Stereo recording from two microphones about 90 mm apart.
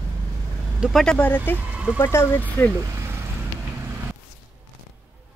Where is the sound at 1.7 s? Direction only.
15° right (ahead or behind).